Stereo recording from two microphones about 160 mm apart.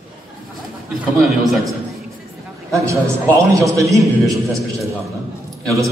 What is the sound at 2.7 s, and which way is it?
A man's voice, 20° right (ahead or behind).